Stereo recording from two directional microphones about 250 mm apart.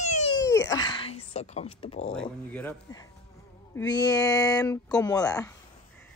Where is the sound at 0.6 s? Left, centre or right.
Centre.